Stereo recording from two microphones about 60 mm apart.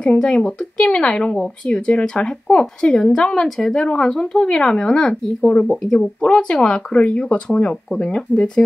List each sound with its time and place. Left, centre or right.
0.0 s speech: centre